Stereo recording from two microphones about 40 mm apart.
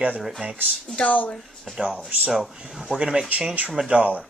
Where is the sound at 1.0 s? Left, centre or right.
Left.